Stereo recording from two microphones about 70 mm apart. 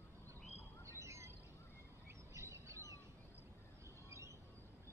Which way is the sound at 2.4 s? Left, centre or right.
Right.